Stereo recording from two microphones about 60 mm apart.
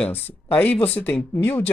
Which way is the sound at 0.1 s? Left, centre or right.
Left.